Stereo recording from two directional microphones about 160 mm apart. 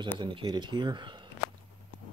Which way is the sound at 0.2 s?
30° right (ahead or behind).